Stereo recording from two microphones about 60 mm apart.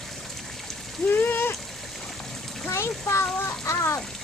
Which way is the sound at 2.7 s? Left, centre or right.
Left.